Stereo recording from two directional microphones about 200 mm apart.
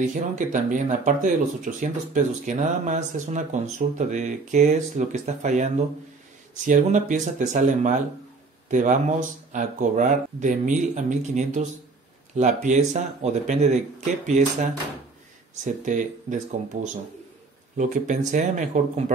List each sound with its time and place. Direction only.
0.0 s speech: 40° right (ahead or behind)
17.7 s speech: 40° right (ahead or behind)